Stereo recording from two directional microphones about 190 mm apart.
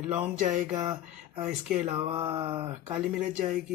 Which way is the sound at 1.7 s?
30° right (ahead or behind).